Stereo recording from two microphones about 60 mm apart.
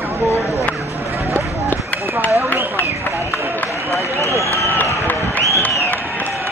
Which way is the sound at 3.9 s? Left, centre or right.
Left.